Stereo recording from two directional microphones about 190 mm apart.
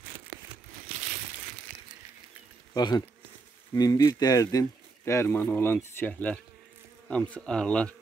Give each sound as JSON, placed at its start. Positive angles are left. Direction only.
{"t": 2.7, "sound": "speech", "side_deg": 20}